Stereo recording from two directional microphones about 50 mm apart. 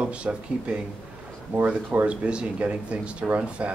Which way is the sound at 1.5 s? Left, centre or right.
Right.